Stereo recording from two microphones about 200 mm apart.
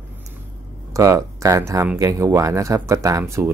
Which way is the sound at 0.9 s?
15° right (ahead or behind).